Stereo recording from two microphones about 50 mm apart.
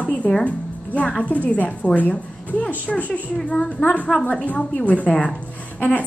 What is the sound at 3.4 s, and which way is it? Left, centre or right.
A woman's voice, centre.